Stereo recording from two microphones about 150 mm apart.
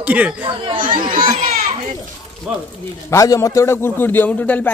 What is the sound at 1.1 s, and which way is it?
Speech, 65° right (ahead or behind).